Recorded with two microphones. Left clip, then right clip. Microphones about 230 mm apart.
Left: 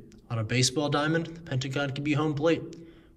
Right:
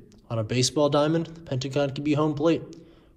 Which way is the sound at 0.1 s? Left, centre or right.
Centre.